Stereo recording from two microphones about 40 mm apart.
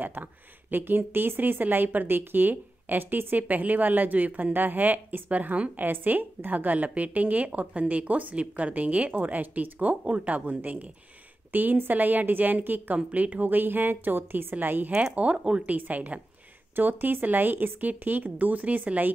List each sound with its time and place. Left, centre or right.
0.0 s speech: right
0.7 s a woman's voice: right
15.1 s speech: right
15.6 s a woman's voice: right
16.7 s a woman's voice: right